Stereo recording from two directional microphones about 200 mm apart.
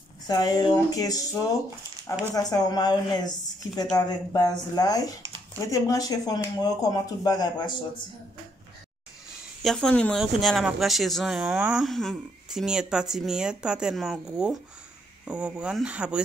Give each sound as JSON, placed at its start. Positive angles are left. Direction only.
{"t": 0.3, "sound": "speech", "side_deg": 20}
{"t": 2.5, "sound": "speech", "side_deg": 20}
{"t": 9.6, "sound": "speech", "side_deg": 0}